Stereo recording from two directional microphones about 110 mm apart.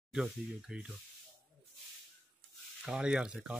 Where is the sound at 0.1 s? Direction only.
5° right (ahead or behind).